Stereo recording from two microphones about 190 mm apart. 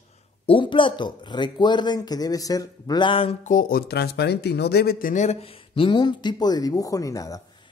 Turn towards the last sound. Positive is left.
turn(degrees=20)  # may be behind; listen again after turning